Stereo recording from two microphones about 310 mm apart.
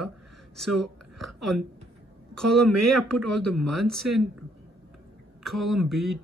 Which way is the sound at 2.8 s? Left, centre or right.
Centre.